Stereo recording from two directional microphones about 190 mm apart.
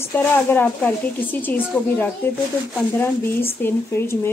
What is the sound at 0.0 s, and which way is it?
Speech, 10° left (ahead or behind).